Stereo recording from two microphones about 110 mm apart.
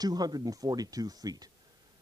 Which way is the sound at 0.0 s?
35° right (ahead or behind).